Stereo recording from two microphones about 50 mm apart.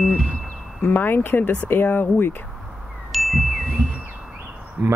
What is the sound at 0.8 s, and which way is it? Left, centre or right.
Speech, left.